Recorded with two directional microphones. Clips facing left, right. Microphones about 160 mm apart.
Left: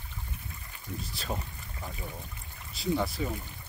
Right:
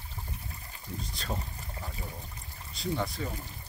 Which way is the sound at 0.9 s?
30° right (ahead or behind).